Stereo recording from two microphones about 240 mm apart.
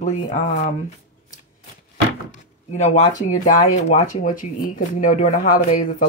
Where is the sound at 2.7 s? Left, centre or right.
Left.